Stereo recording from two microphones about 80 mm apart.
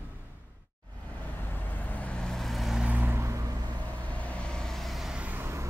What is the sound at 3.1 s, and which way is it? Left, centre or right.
Vehicle, right.